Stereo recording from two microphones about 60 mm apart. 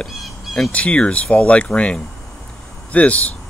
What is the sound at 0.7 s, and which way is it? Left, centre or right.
Speech, left.